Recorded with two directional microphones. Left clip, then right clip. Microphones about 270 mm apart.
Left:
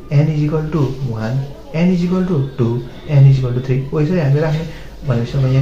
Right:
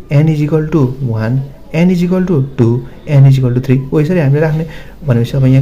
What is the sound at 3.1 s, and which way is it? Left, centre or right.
A man's voice, right.